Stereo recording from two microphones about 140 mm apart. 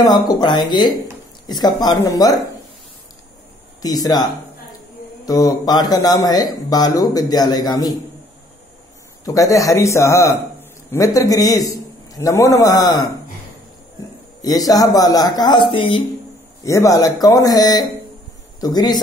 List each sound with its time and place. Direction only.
0.3 s speech: 30° left (ahead or behind)
3.8 s speech: 25° left (ahead or behind)
9.2 s a man's voice: 25° left (ahead or behind)
12.7 s speech: centre (ahead or behind)
14.4 s speech: 25° left (ahead or behind)
16.6 s speech: 25° left (ahead or behind)